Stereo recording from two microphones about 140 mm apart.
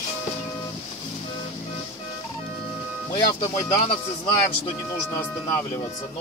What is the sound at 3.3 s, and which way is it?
Speech, 35° left (ahead or behind).